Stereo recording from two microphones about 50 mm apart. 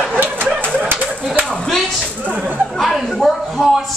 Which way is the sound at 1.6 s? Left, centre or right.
Centre.